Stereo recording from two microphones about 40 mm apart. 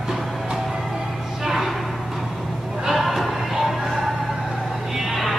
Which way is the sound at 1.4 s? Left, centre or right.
Centre.